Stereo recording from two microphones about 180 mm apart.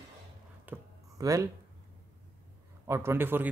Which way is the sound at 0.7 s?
20° right (ahead or behind).